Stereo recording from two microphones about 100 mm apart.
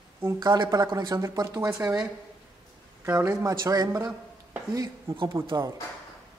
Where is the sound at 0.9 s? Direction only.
35° right (ahead or behind).